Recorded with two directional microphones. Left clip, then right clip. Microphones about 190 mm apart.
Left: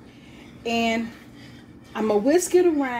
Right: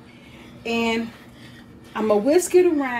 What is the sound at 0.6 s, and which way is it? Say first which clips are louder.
A woman's voice: even; 30° left (ahead or behind).